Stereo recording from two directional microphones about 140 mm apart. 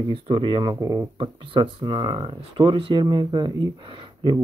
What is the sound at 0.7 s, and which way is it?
Speech, 20° right (ahead or behind).